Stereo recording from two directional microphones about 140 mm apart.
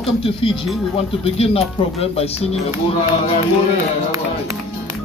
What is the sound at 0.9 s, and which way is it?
Speech, 45° left (ahead or behind).